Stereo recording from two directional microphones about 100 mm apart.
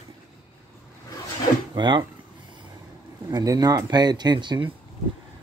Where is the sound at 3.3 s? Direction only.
40° right (ahead or behind).